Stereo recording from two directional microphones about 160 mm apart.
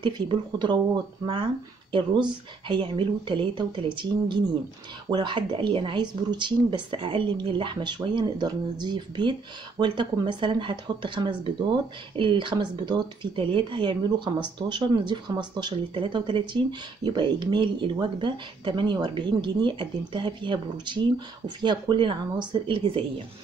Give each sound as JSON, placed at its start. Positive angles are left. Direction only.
{"t": 0.0, "sound": "a woman's voice", "side_deg": -30}